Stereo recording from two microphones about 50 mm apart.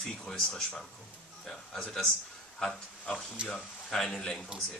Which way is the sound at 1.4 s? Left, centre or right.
Centre.